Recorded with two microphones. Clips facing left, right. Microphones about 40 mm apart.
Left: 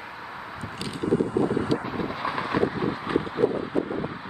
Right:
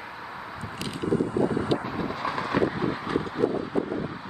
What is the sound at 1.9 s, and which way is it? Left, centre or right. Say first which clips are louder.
Vehicle: left 1 dB; centre.